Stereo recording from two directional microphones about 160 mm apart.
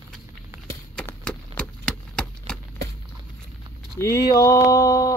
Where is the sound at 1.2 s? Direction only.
5° left (ahead or behind).